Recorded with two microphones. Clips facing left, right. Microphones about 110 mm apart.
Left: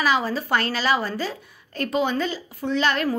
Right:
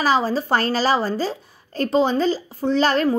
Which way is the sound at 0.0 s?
35° right (ahead or behind).